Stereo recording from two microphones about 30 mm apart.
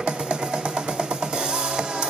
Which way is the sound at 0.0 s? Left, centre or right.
Right.